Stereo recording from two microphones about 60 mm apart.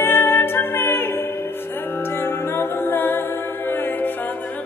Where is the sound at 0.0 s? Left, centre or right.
Left.